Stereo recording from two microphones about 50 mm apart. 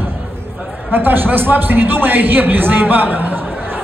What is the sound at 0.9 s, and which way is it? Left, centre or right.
A man's voice, right.